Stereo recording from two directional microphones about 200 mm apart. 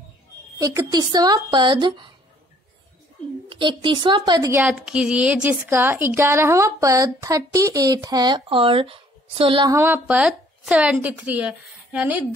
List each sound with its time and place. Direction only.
0.6 s speech: 15° right (ahead or behind)
3.4 s speech: 25° right (ahead or behind); by 12.3 s 5° right (ahead or behind)